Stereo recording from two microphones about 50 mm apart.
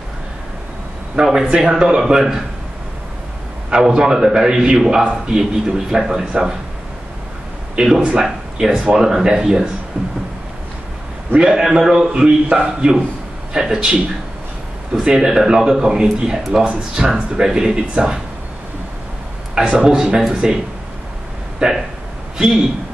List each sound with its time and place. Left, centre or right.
1.1 s a man's voice: centre
3.7 s a man's voice: centre
7.7 s a man's voice: centre
9.9 s a sound: right
11.3 s a man's voice: centre
15.0 s a man's voice: centre
19.5 s a man's voice: centre
21.6 s a man's voice: centre